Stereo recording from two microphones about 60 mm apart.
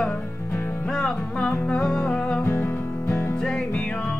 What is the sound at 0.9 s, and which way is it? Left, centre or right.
Music, centre.